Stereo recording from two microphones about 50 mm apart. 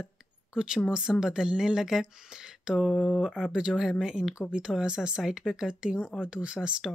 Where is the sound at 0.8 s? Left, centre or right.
Centre.